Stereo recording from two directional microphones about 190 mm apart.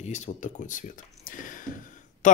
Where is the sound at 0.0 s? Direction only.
40° left (ahead or behind).